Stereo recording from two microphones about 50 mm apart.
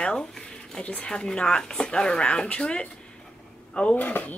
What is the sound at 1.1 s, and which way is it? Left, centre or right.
Speech, centre.